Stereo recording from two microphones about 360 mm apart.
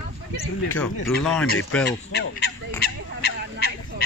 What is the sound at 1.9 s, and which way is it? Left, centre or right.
Speech, left.